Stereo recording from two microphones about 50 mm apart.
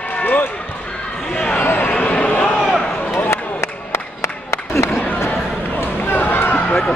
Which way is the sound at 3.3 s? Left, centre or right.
Left.